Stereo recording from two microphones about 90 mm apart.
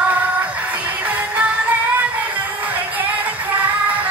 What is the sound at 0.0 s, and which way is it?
Music, 15° right (ahead or behind).